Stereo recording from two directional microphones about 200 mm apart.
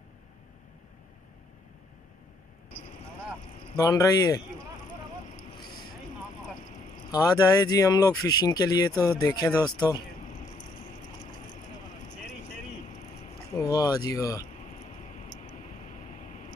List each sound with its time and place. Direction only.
3.7 s speech: 15° left (ahead or behind)
5.5 s vehicle: 20° left (ahead or behind)
7.1 s speech: 20° left (ahead or behind)
13.6 s speech: 20° left (ahead or behind)
15.0 s vehicle: 40° left (ahead or behind)